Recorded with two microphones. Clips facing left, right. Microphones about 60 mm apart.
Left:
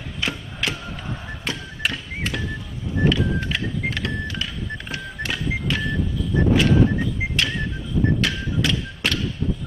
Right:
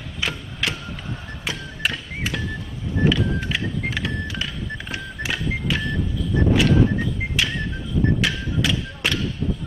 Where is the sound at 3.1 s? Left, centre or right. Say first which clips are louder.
Even; centre.